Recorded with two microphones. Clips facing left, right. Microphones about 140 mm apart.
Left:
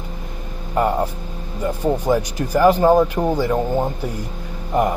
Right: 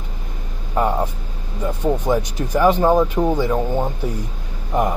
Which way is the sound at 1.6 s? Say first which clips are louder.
Left 1 dB; centre (ahead or behind).